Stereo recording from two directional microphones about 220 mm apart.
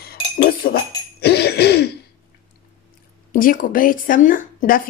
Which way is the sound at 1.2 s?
50° left (ahead or behind).